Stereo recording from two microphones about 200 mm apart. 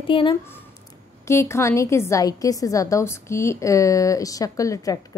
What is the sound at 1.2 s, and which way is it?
A woman's voice, 15° left (ahead or behind).